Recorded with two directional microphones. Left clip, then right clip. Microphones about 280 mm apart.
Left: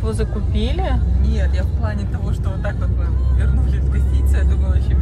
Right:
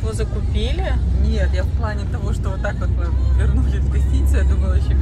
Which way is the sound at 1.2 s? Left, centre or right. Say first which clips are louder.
Right 2 dB; centre.